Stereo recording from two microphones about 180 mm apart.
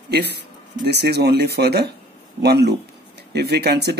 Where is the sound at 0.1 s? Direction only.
65° right (ahead or behind).